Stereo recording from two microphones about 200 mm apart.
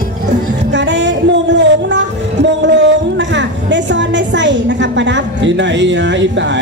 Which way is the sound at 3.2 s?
65° right (ahead or behind).